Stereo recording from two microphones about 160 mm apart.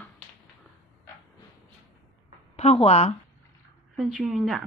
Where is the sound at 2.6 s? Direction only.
40° left (ahead or behind).